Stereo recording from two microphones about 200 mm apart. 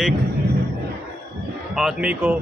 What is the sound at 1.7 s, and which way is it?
Speech, 5° right (ahead or behind).